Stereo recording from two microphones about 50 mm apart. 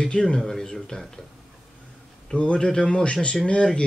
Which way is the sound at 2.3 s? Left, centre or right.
Centre.